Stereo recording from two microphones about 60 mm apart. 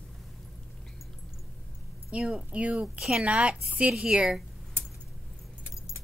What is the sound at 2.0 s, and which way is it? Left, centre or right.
A woman's voice, centre.